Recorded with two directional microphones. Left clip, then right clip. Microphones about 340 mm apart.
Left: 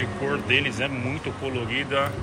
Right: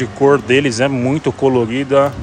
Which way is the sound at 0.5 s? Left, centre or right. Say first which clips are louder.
Right 10 dB; right.